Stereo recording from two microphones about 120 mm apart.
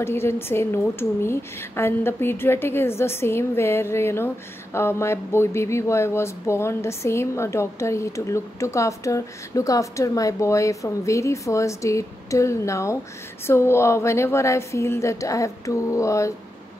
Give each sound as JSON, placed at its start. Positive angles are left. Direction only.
{"t": 0.0, "sound": "speech", "side_deg": 20}